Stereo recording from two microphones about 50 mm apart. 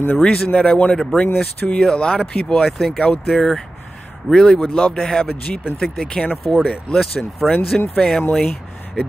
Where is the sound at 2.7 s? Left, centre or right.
Centre.